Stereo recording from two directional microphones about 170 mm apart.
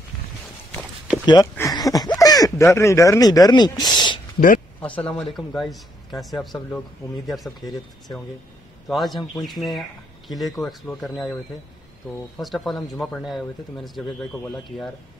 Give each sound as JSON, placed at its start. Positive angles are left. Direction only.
{"t": 0.7, "sound": "walk", "side_deg": -5}
{"t": 1.2, "sound": "speech", "side_deg": 25}
{"t": 4.8, "sound": "speech", "side_deg": 10}
{"t": 8.8, "sound": "speech", "side_deg": 0}
{"t": 12.4, "sound": "speech", "side_deg": 0}